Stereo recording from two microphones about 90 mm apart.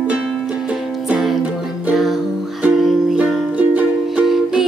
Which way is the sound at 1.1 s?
5° right (ahead or behind).